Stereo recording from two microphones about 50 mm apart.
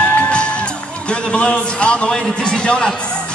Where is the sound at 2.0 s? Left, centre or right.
Centre.